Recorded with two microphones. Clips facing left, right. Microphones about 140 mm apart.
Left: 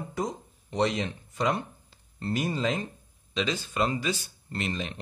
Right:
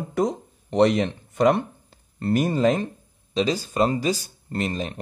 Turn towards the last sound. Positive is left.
turn(degrees=-40)  # may be behind; listen again after turning